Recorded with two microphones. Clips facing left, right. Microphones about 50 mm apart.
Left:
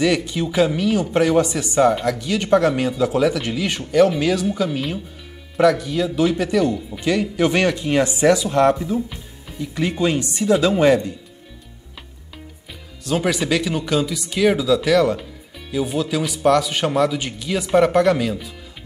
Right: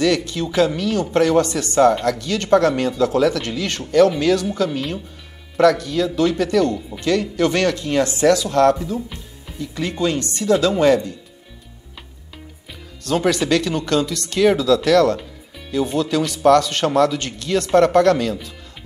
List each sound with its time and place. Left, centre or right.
0.0 s speech: centre
13.0 s speech: centre